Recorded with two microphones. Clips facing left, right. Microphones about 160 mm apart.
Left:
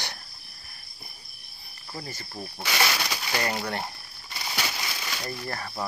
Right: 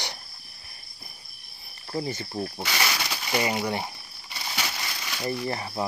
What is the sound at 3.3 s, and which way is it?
Speech, 5° right (ahead or behind).